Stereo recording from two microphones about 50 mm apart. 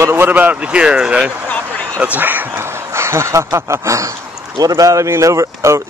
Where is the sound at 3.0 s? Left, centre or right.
Right.